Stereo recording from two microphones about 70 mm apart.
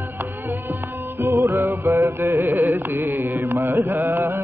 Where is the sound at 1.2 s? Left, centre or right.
Right.